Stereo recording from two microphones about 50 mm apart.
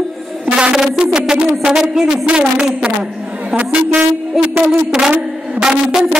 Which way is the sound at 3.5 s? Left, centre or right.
Right.